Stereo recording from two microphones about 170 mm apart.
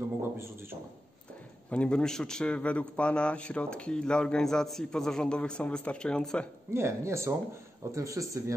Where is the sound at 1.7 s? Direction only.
5° left (ahead or behind).